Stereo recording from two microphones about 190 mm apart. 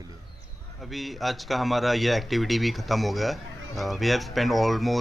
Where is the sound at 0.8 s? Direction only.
Centre (ahead or behind).